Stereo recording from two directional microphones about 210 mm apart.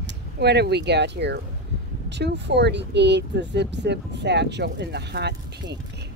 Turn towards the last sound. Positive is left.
turn(degrees=-55)  # may be behind; listen again after turning